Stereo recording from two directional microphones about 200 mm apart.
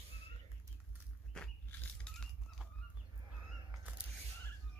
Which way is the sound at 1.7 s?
10° left (ahead or behind).